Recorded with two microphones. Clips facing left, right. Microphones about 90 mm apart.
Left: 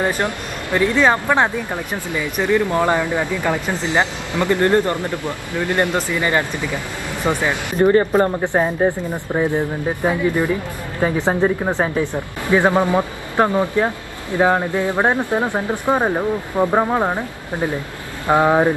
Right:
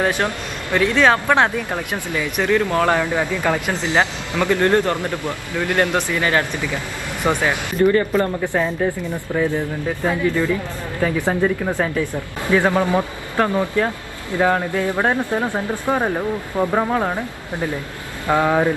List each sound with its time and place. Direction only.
0.2 s speech: 15° left (ahead or behind)
4.9 s speech: 20° right (ahead or behind)
5.6 s speech: 15° left (ahead or behind)
7.8 s speech: 30° left (ahead or behind)
9.5 s speech: 20° left (ahead or behind)